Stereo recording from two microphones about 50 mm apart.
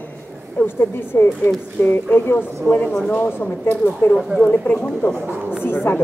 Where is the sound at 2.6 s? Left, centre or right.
Left.